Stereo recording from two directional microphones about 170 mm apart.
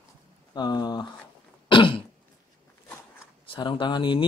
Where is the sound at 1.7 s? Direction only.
30° left (ahead or behind).